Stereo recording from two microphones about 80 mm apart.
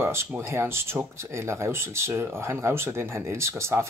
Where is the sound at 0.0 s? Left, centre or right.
Right.